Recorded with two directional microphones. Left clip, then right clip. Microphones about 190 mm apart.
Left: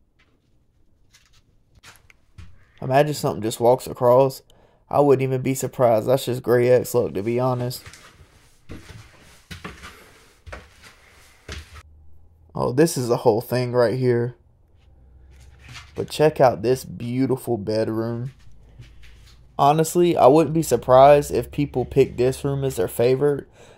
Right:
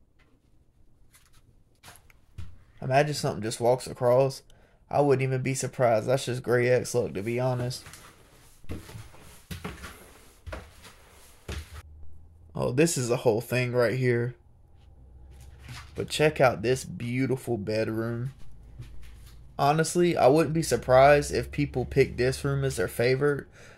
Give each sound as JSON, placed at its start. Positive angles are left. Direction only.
{"t": 2.8, "sound": "speech", "side_deg": 40}
{"t": 12.5, "sound": "speech", "side_deg": 25}
{"t": 16.0, "sound": "speech", "side_deg": 25}
{"t": 19.5, "sound": "speech", "side_deg": 30}